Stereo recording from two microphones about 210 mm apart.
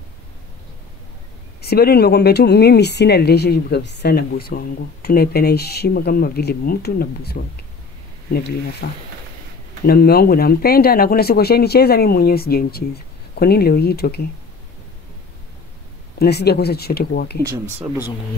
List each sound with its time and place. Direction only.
1.6 s speech: 50° left (ahead or behind)
8.8 s speech: 45° left (ahead or behind)
16.2 s speech: 50° left (ahead or behind)
17.4 s speech: 15° right (ahead or behind)